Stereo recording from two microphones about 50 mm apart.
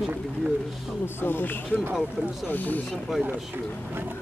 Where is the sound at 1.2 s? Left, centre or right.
Left.